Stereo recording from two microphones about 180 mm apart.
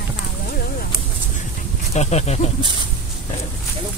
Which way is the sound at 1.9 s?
40° left (ahead or behind).